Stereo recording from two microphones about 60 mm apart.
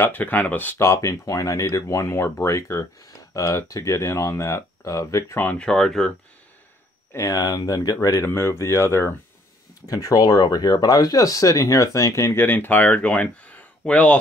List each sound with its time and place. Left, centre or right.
0.0 s speech: left
0.7 s speech: left
5.5 s speech: centre
7.2 s speech: left
8.3 s speech: left
9.8 s speech: left
12.4 s speech: left